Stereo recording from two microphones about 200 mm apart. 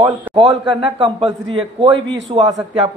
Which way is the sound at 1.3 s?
25° right (ahead or behind).